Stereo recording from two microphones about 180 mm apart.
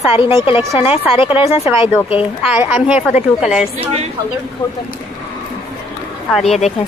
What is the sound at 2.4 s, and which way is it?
A woman's voice, 5° right (ahead or behind).